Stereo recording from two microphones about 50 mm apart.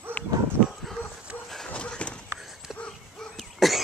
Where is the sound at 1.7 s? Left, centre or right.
Left.